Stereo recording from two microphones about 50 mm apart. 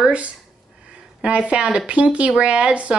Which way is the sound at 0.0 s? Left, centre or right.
Right.